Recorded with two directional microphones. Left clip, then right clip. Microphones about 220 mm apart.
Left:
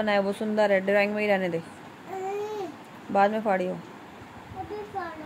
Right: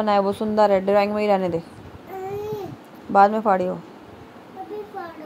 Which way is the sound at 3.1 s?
20° right (ahead or behind).